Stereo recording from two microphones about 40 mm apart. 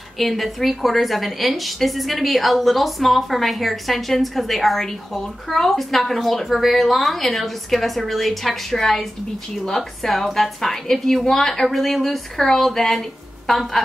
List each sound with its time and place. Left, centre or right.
0.2 s a woman's voice: centre